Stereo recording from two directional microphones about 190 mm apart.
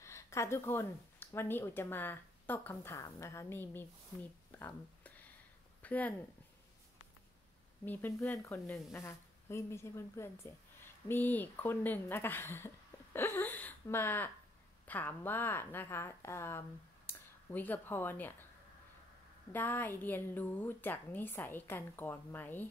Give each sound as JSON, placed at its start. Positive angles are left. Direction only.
{"t": 0.0, "sound": "speech", "side_deg": 15}
{"t": 7.8, "sound": "a woman's voice", "side_deg": 10}
{"t": 19.5, "sound": "a woman's voice", "side_deg": 10}